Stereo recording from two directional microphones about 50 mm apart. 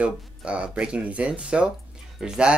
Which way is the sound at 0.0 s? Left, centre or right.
Right.